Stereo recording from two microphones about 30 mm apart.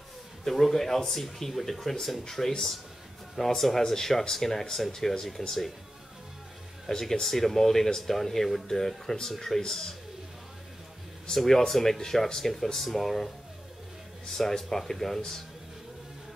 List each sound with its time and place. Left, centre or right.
0.5 s speech: centre
6.9 s speech: centre
11.3 s speech: centre
14.6 s speech: centre